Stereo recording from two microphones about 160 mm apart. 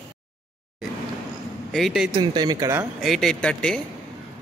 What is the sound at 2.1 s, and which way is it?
Speech, 25° right (ahead or behind).